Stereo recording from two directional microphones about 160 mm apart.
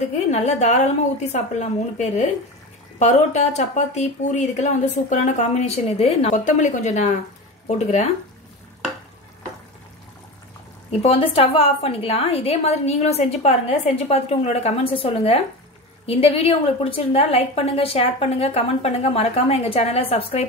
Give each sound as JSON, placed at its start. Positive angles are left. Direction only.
{"t": 0.3, "sound": "speech", "side_deg": 45}
{"t": 10.9, "sound": "a woman's voice", "side_deg": 35}